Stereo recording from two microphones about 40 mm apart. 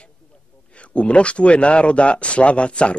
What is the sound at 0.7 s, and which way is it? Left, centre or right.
Speech, left.